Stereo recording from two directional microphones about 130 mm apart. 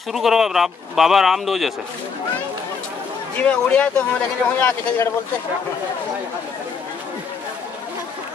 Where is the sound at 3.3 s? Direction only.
10° left (ahead or behind).